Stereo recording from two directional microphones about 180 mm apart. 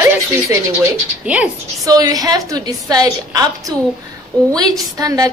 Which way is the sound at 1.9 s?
20° right (ahead or behind).